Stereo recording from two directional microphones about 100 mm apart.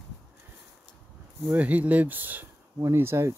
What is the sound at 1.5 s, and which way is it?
Speech, 15° right (ahead or behind).